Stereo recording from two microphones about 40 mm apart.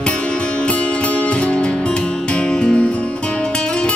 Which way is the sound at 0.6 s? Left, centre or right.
Left.